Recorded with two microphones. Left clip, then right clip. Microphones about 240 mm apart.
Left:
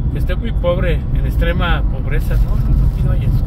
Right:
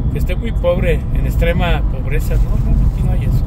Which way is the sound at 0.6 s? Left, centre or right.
Right.